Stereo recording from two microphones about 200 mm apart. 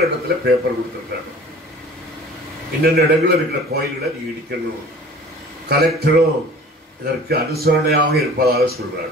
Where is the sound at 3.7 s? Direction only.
50° right (ahead or behind).